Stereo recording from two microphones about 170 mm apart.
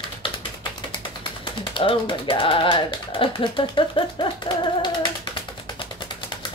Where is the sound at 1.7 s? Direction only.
30° left (ahead or behind).